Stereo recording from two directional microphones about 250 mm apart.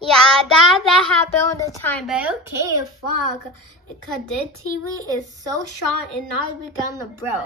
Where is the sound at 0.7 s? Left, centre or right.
Centre.